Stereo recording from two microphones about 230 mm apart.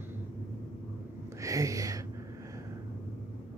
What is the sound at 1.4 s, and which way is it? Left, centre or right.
Speech, centre.